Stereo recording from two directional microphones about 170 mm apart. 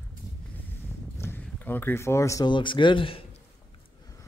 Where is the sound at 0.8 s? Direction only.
10° left (ahead or behind); by 3.2 s 30° left (ahead or behind).